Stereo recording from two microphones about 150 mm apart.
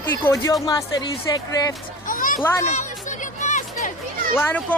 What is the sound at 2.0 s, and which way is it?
Children playing, 65° left (ahead or behind).